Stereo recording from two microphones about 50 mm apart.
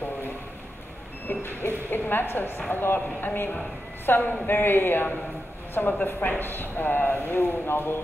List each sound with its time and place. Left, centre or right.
1.9 s a woman's voice: left